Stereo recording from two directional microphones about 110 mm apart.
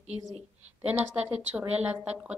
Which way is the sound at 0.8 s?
15° right (ahead or behind).